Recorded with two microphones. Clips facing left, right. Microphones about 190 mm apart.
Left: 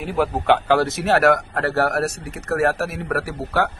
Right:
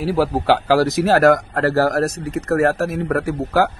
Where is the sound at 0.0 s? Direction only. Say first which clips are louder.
Right 3 dB; 35° right (ahead or behind).